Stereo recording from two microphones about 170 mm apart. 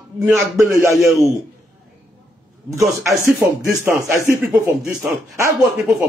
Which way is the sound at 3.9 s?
15° right (ahead or behind).